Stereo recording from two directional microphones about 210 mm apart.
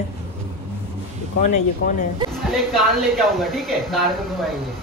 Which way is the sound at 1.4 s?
35° left (ahead or behind).